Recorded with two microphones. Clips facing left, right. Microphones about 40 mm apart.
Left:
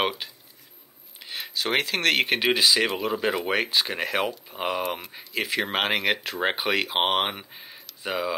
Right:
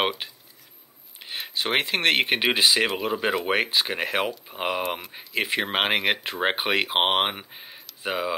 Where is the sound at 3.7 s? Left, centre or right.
Centre.